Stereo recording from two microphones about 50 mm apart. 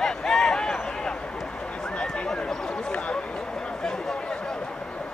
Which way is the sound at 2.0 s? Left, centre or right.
Centre.